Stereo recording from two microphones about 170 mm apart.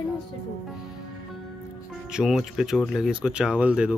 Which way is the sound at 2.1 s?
5° right (ahead or behind).